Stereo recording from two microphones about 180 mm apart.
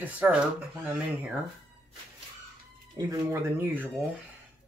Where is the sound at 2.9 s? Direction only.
15° right (ahead or behind).